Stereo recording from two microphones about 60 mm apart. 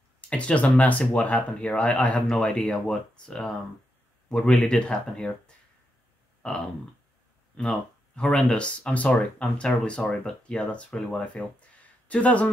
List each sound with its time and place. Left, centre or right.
0.3 s a man's voice: left
6.4 s speech: centre